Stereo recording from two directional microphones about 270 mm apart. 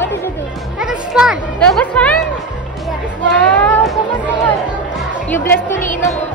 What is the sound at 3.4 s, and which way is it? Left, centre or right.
Music, centre.